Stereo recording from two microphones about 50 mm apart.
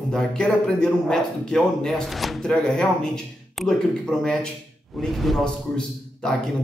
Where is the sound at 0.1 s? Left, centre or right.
Centre.